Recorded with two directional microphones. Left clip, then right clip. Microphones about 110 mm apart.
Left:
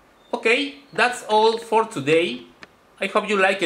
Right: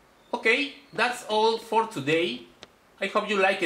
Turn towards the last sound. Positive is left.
turn(degrees=5)  # may be behind; listen again after turning